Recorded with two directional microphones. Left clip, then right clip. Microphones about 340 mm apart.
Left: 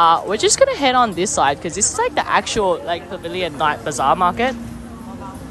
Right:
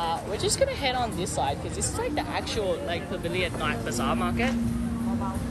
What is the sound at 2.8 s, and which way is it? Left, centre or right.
Speech, centre.